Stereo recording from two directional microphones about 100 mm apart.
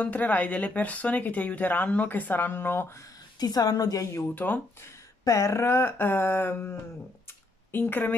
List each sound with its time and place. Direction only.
0.0 s speech: 15° left (ahead or behind)
3.3 s a woman's voice: 40° left (ahead or behind)
4.1 s speech: 20° left (ahead or behind)